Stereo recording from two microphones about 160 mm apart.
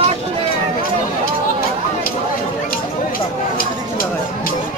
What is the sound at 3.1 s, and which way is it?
Chatter, 65° left (ahead or behind).